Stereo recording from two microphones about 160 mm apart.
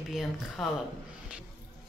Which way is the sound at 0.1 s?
Centre (ahead or behind).